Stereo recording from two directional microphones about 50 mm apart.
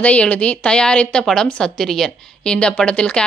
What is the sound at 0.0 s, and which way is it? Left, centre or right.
A woman's voice, left.